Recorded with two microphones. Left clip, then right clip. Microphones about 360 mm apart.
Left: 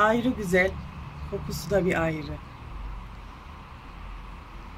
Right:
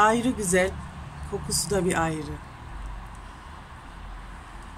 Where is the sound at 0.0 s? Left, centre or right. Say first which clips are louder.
Right 2 dB; centre.